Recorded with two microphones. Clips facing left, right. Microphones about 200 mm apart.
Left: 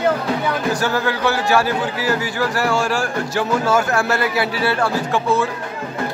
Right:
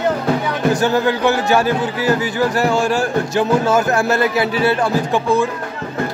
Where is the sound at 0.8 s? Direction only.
20° right (ahead or behind).